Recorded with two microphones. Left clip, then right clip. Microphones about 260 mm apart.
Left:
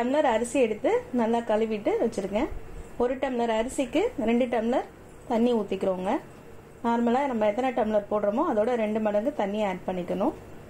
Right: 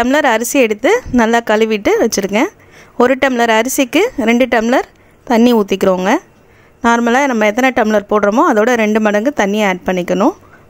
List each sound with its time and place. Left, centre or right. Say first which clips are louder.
0.0 s speech: right 12 dB; right